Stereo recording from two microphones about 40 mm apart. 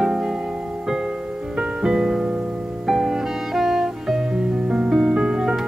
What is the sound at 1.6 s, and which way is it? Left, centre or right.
Music, centre.